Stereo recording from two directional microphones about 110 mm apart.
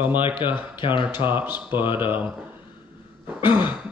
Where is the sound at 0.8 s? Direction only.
50° left (ahead or behind).